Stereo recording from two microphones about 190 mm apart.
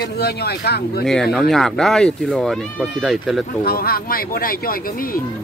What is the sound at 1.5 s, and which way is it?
Speech, centre (ahead or behind).